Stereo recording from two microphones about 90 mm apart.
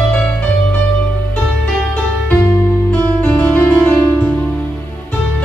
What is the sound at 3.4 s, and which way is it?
Music, 20° left (ahead or behind).